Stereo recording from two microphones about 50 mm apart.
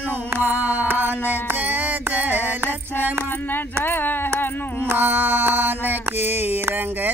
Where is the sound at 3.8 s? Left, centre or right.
Left.